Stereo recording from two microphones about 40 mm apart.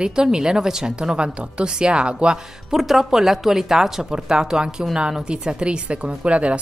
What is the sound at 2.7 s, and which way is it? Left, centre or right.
A woman's voice, centre.